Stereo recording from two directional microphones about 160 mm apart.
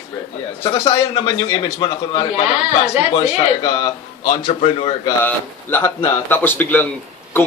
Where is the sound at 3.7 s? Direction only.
25° left (ahead or behind).